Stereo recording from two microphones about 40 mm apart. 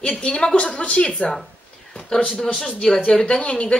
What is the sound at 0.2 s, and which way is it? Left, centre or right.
A woman's voice, left.